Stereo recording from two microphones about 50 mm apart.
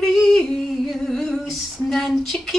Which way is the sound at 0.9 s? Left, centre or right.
Centre.